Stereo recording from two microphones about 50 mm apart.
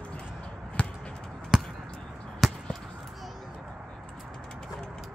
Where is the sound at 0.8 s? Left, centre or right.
Left.